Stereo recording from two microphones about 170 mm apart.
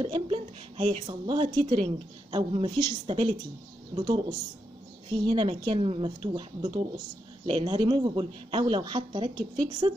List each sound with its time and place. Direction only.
0.0 s a woman's voice: 30° right (ahead or behind)